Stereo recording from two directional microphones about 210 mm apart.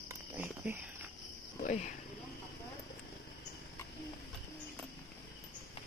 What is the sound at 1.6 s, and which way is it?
Cricket, 35° left (ahead or behind).